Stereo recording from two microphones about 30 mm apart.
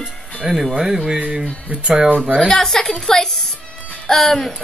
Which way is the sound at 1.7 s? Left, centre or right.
Right.